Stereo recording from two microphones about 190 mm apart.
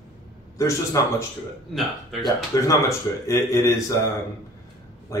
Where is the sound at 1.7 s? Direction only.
Centre (ahead or behind).